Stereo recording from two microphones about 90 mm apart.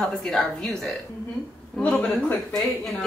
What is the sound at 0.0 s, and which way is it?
Speech, 5° left (ahead or behind).